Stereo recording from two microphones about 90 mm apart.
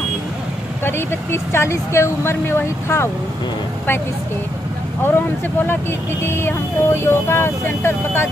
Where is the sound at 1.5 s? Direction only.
30° left (ahead or behind).